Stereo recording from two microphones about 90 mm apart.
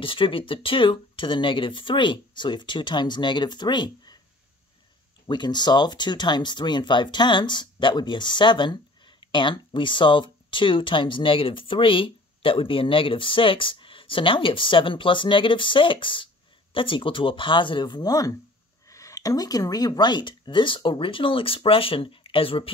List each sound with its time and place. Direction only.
0.0 s speech: 75° left (ahead or behind); by 4.2 s 55° left (ahead or behind)
5.2 s speech: 55° left (ahead or behind); by 22.7 s 90° left